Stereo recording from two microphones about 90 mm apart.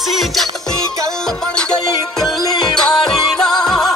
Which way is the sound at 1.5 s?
5° left (ahead or behind).